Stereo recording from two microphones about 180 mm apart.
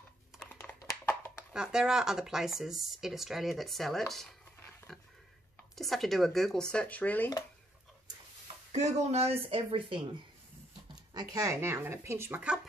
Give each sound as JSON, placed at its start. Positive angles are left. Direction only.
{"t": 0.4, "sound": "a sound", "side_deg": 10}
{"t": 1.5, "sound": "speech", "side_deg": -5}
{"t": 4.6, "sound": "pig", "side_deg": 5}
{"t": 5.8, "sound": "speech", "side_deg": 0}
{"t": 8.7, "sound": "speech", "side_deg": -40}
{"t": 11.1, "sound": "speech", "side_deg": -20}